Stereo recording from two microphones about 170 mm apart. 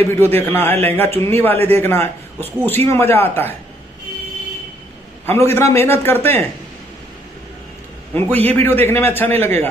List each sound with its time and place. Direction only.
0.0 s a man's voice: 15° left (ahead or behind)
5.2 s a man's voice: 15° left (ahead or behind)
8.5 s a man's voice: 15° left (ahead or behind)